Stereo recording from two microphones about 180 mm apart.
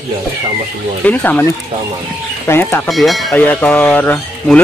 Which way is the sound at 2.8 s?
Centre (ahead or behind).